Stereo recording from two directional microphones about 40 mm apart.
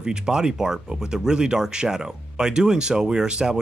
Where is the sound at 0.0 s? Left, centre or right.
Centre.